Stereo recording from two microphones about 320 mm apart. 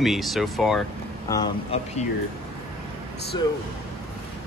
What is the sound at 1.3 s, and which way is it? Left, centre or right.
Speech, centre.